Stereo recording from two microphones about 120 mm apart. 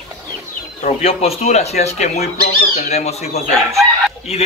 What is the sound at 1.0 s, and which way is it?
Speech, 60° left (ahead or behind).